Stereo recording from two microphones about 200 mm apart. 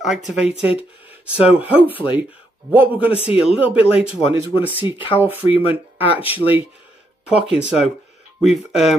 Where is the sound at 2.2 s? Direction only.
10° right (ahead or behind).